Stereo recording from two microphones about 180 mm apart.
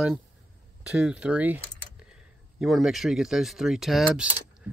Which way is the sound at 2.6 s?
Centre (ahead or behind).